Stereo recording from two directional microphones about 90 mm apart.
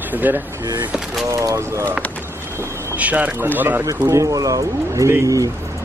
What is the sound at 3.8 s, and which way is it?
Speech, 35° right (ahead or behind).